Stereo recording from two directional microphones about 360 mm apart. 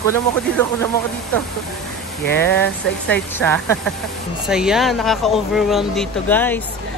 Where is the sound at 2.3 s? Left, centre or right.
Centre.